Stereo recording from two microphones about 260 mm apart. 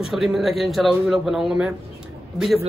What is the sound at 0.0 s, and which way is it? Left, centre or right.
A man's voice, centre.